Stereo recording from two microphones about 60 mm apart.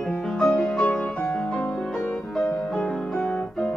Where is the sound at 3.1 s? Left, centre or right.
Centre.